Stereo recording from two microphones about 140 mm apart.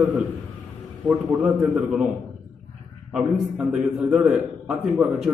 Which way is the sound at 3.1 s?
5° right (ahead or behind).